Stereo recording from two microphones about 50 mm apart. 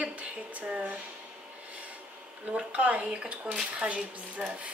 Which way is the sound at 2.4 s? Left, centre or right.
Right.